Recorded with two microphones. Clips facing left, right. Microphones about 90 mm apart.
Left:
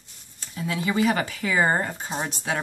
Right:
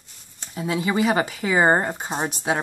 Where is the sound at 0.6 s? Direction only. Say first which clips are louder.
Right 2 dB; 20° right (ahead or behind).